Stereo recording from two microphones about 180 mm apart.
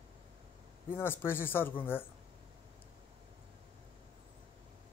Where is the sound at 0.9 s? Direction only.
10° left (ahead or behind).